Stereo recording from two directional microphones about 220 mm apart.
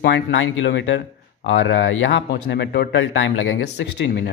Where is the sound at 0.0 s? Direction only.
55° left (ahead or behind).